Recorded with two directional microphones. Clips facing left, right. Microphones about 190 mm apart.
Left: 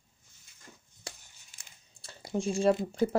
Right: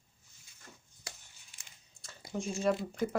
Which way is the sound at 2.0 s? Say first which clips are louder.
Left 6 dB; 30° left (ahead or behind).